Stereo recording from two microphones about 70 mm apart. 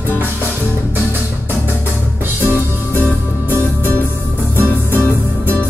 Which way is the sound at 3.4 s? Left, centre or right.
Left.